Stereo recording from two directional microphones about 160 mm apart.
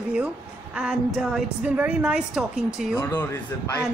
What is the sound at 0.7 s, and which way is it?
A woman's voice, 5° right (ahead or behind).